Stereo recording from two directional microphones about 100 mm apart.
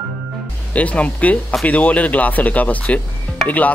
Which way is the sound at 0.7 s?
15° left (ahead or behind).